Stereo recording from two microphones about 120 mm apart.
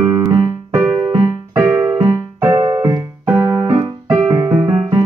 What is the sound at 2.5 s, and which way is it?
Music, 30° right (ahead or behind).